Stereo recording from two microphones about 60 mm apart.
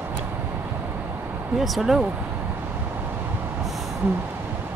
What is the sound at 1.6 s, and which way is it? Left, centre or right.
Speech, centre.